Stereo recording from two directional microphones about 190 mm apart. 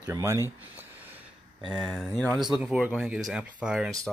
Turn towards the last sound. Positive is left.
turn(degrees=-5)  # may be behind; listen again after turning